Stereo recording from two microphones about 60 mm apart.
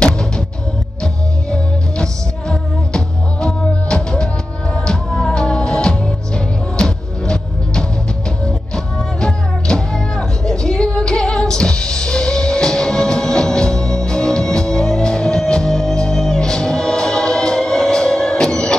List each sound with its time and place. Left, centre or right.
1.0 s music: centre